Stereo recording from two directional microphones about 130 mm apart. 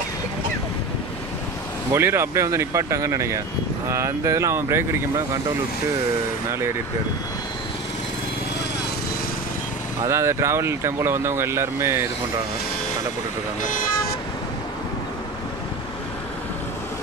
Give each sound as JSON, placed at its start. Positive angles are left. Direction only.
{"t": 2.0, "sound": "speech", "side_deg": -20}
{"t": 10.0, "sound": "speech", "side_deg": -20}
{"t": 13.6, "sound": "speech", "side_deg": 90}